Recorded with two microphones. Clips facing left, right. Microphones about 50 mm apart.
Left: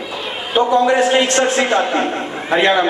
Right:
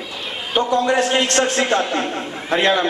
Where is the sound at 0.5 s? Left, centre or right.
Centre.